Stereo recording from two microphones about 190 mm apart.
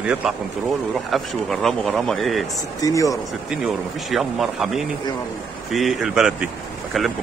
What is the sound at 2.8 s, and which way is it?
Speech, 15° left (ahead or behind).